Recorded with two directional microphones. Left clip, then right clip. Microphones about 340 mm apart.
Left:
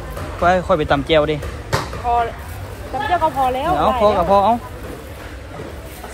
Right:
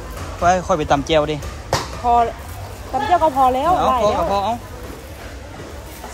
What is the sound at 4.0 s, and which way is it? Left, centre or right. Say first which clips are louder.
Speech: left 4 dB; centre.